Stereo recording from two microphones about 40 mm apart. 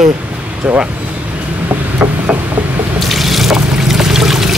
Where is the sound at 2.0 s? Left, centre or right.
Right.